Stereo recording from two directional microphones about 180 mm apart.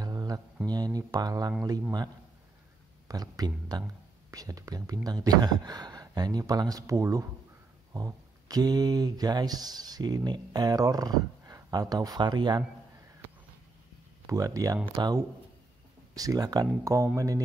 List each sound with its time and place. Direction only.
0.0 s a sound: 20° right (ahead or behind)
0.7 s speech: 20° right (ahead or behind)
3.1 s speech: 20° right (ahead or behind)
14.2 s speech: 20° right (ahead or behind)